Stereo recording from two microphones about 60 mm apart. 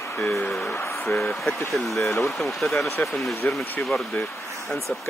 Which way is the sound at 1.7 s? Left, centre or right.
Centre.